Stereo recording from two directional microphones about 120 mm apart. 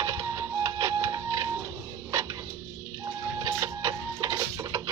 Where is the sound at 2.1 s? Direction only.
30° right (ahead or behind).